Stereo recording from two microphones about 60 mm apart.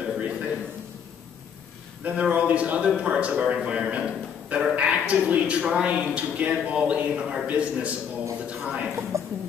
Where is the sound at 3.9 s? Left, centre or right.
Centre.